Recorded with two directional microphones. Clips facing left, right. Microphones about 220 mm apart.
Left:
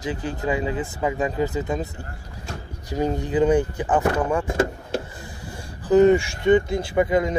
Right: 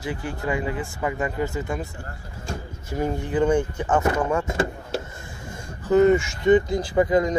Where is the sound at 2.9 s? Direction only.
20° left (ahead or behind).